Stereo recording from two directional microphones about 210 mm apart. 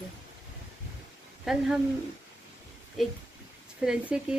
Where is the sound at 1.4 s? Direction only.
5° right (ahead or behind).